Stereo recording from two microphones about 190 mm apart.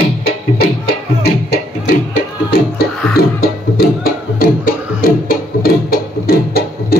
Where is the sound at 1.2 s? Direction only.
55° left (ahead or behind).